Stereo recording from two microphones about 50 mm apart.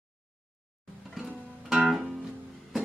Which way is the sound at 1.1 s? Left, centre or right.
Centre.